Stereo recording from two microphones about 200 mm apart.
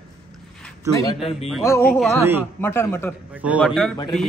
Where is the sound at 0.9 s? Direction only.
20° left (ahead or behind).